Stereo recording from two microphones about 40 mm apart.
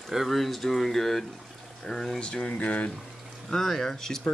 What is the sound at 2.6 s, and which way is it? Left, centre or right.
Speech, left.